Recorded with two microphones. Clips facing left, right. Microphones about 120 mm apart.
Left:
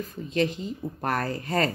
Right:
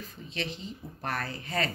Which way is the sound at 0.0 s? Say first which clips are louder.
Left 11 dB; 45° left (ahead or behind).